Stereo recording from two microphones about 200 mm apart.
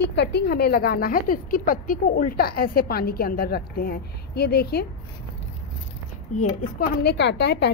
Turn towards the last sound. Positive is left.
turn(degrees=55)  # may be behind; listen again after turning